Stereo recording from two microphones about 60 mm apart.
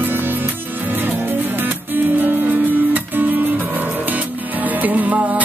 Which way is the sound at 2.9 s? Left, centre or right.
Right.